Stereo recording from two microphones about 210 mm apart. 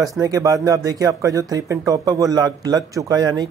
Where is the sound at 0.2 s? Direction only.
15° right (ahead or behind).